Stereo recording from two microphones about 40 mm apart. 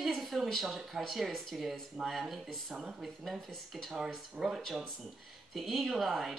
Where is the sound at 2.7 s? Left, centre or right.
Centre.